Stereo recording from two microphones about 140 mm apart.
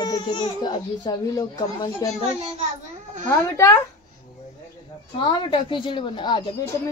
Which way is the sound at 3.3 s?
20° left (ahead or behind).